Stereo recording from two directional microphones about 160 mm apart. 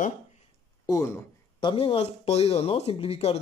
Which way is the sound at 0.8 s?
20° left (ahead or behind).